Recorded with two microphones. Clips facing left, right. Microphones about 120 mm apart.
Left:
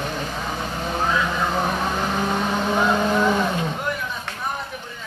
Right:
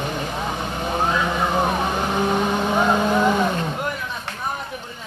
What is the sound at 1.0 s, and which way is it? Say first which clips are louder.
Vehicle: right 1 dB; 20° right (ahead or behind).